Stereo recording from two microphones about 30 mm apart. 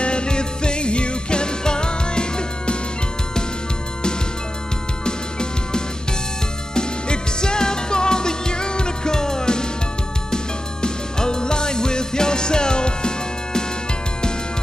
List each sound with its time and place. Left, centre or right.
0.0 s music: left
5.0 s music: left